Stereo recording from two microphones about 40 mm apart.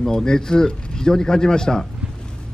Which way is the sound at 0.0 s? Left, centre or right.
Centre.